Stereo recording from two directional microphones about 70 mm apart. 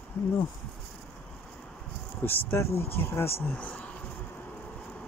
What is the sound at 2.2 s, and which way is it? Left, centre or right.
Speech, left.